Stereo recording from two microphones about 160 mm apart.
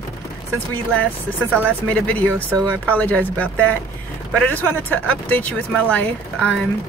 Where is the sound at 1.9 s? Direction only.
10° left (ahead or behind).